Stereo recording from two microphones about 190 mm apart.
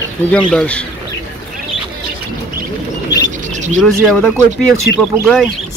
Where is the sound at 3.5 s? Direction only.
40° right (ahead or behind).